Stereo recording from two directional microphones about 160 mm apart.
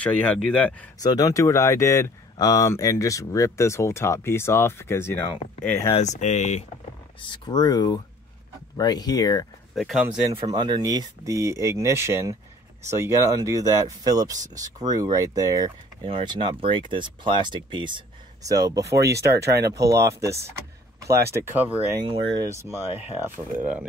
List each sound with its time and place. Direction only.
0.0 s speech: 10° left (ahead or behind)
1.0 s speech: 20° left (ahead or behind)
5.9 s speech: 45° left (ahead or behind)
7.2 s speech: 30° left (ahead or behind)
9.8 s speech: centre (ahead or behind)
10.4 s speech: 25° right (ahead or behind)
16.1 s speech: 35° right (ahead or behind)
19.1 s speech: 90° right
19.6 s speech: 20° right (ahead or behind)
21.5 s speech: 10° right (ahead or behind)
21.9 s speech: 30° right (ahead or behind); by 23.9 s 10° right (ahead or behind)